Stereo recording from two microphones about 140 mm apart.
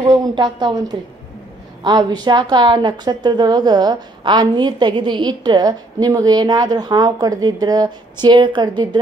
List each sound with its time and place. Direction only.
0.0 s a woman's voice: 30° right (ahead or behind)
1.8 s a woman's voice: 30° right (ahead or behind)